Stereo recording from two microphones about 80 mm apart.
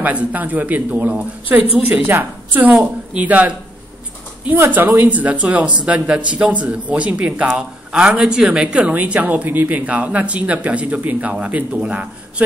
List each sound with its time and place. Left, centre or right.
0.0 s speech: centre